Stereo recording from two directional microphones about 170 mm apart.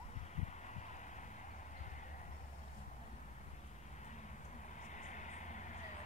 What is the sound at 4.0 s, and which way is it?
Vehicle, 45° left (ahead or behind).